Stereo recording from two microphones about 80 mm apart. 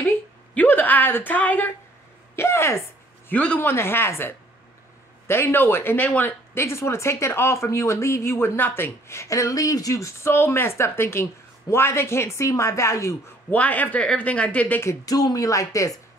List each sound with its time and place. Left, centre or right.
0.0 s a woman's voice: left
2.3 s speech: left
3.3 s speech: left
6.5 s speech: left
13.5 s speech: centre
15.0 s speech: left